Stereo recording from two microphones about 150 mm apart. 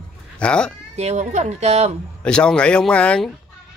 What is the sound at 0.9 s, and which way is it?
Speech, 50° right (ahead or behind).